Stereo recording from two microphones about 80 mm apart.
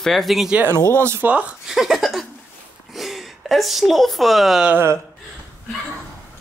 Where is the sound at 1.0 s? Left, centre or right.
Right.